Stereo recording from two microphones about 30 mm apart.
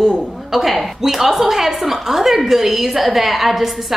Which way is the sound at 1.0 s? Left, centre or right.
Centre.